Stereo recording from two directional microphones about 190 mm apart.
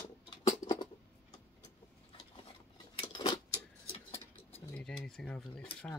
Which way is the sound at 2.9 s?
25° left (ahead or behind).